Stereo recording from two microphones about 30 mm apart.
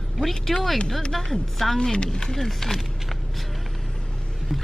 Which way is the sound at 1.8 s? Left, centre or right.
Left.